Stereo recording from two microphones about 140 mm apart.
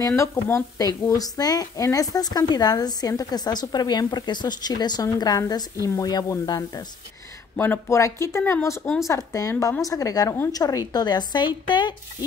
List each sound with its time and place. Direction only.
0.0 s speech: 20° left (ahead or behind)
7.5 s speech: 15° left (ahead or behind); by 12.3 s 35° left (ahead or behind)